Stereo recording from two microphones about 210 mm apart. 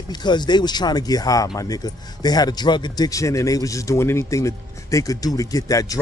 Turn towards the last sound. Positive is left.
turn(degrees=15)  # may be behind; listen again after turning